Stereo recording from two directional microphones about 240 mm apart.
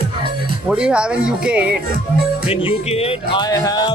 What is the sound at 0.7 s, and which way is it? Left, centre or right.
Speech, centre.